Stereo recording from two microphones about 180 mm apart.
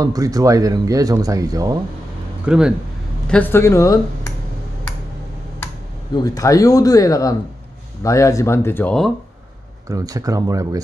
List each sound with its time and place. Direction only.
0.0 s speech: 20° right (ahead or behind)
2.4 s speech: 5° right (ahead or behind)
3.3 s speech: 10° left (ahead or behind)
6.1 s speech: 20° left (ahead or behind)
9.8 s speech: 20° right (ahead or behind)